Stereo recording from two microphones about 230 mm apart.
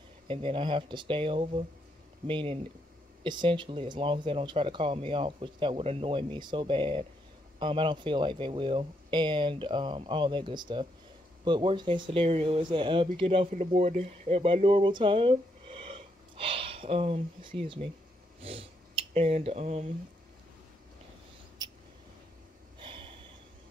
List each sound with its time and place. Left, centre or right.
0.3 s speech: right
22.8 s gasp: right